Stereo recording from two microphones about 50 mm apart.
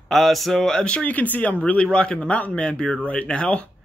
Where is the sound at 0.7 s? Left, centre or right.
Centre.